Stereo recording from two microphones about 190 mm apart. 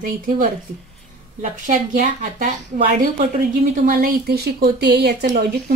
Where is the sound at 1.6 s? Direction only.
40° right (ahead or behind); by 5.4 s 60° right (ahead or behind).